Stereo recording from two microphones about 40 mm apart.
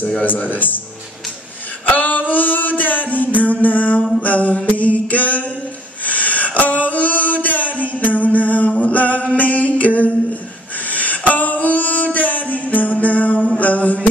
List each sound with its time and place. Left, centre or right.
0.2 s a man's voice: left
1.9 s music: left
4.2 s a sound: left
7.4 s music: left
8.8 s a capella: left
9.4 s music: left